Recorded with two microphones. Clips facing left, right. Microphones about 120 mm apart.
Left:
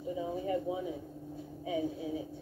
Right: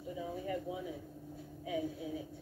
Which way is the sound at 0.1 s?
20° left (ahead or behind).